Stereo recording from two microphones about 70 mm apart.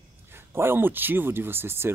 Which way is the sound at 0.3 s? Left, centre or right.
Right.